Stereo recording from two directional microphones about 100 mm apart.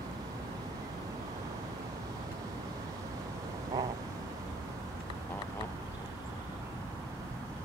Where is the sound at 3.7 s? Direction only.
35° right (ahead or behind).